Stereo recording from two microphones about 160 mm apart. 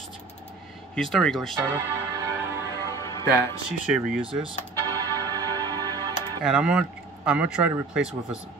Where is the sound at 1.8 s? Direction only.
20° right (ahead or behind).